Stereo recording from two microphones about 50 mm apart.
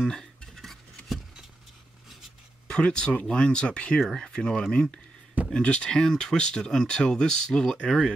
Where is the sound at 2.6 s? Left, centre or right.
Centre.